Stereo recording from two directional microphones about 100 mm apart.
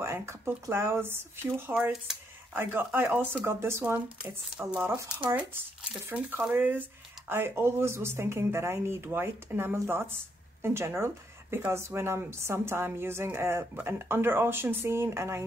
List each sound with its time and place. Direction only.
0.0 s speech: 25° right (ahead or behind)
4.6 s speech: 10° right (ahead or behind); by 15.4 s 30° right (ahead or behind)